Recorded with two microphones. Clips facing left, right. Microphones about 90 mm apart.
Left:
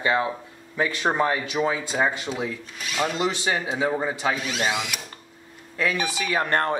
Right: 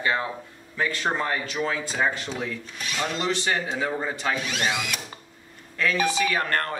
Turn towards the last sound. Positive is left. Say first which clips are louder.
# left 3 dB
turn(degrees=20)  # may be behind; listen again after turning